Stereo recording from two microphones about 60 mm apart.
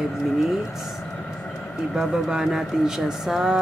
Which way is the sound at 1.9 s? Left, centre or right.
Centre.